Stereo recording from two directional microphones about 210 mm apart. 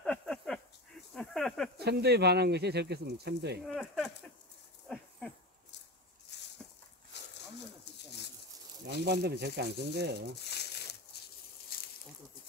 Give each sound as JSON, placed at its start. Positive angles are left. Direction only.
{"t": 0.0, "sound": "a sound", "side_deg": 5}
{"t": 1.8, "sound": "speech", "side_deg": -50}
{"t": 3.6, "sound": "speech", "side_deg": 0}
{"t": 4.8, "sound": "a sound", "side_deg": 5}
{"t": 8.8, "sound": "speech", "side_deg": -55}
{"t": 10.5, "sound": "crumpling", "side_deg": 50}
{"t": 11.7, "sound": "snake", "side_deg": 45}